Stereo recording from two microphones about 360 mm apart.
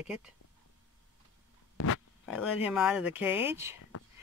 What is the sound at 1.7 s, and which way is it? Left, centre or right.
Pig, left.